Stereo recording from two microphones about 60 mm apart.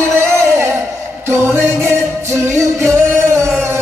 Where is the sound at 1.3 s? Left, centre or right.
Right.